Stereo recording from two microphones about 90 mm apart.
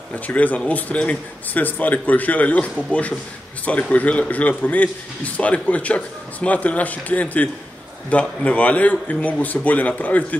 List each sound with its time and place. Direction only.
0.1 s a man's voice: 15° left (ahead or behind)